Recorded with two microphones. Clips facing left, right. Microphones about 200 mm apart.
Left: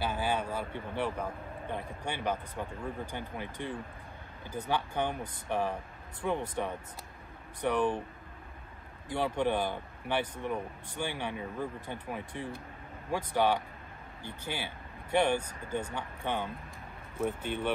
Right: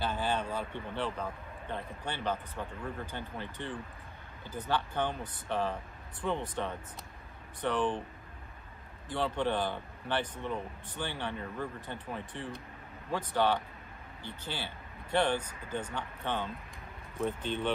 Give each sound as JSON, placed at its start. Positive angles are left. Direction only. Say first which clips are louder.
{"t": 0.0, "sound": "a man's voice", "louder": "left 1 dB", "side_deg": 10}
{"t": 9.1, "sound": "a man's voice", "louder": "left 2 dB", "side_deg": 10}